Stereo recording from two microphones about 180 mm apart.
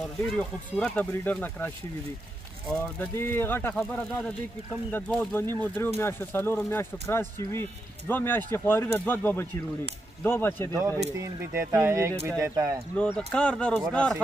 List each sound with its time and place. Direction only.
0.3 s speech: 5° left (ahead or behind)
2.7 s speech: 10° left (ahead or behind)
10.7 s speech: 20° right (ahead or behind)
13.0 s speech: 5° left (ahead or behind)